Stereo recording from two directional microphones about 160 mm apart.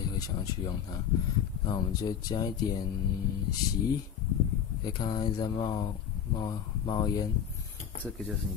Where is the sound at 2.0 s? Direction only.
25° left (ahead or behind).